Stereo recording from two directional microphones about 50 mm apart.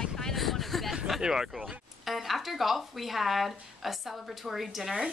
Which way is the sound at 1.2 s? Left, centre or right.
Centre.